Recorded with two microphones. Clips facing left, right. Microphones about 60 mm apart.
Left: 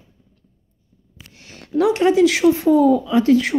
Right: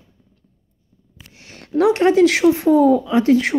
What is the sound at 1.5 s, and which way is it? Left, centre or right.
A woman's voice, right.